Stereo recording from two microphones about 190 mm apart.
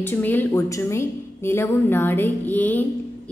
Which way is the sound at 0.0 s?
10° left (ahead or behind).